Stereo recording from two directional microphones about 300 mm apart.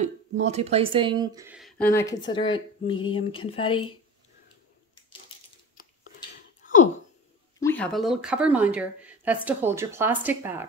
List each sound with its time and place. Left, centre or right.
0.0 s speech: right; by 3.8 s centre
6.6 s a sound: left
7.5 s speech: centre